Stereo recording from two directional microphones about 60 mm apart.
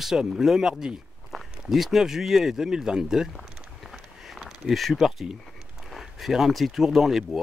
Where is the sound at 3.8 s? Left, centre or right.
Centre.